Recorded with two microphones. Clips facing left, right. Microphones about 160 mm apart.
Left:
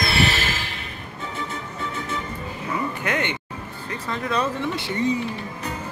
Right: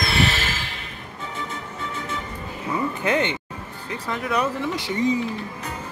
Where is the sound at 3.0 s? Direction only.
25° right (ahead or behind).